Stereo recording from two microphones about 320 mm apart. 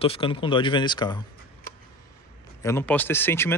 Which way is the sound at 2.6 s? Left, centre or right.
Centre.